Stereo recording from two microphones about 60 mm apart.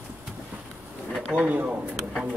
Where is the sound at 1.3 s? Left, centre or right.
Right.